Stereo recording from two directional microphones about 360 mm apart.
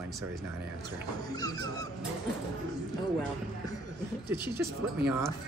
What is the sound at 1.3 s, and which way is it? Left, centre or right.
Dog, centre.